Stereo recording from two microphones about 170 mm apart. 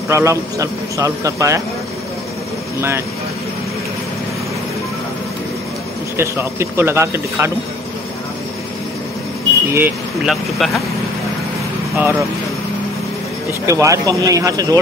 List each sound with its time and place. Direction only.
0.1 s a man's voice: 15° right (ahead or behind)
6.1 s a man's voice: 15° right (ahead or behind)
9.7 s speech: 10° right (ahead or behind)
12.0 s a man's voice: 10° right (ahead or behind)
13.5 s speech: 15° right (ahead or behind)